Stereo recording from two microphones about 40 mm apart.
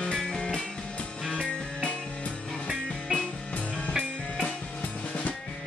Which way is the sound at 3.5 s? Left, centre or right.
Left.